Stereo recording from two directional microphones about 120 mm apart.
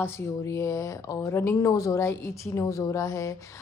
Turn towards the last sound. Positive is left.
turn(degrees=25)  # may be behind; listen again after turning